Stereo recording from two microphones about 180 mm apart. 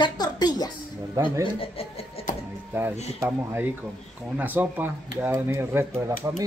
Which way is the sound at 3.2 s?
10° right (ahead or behind).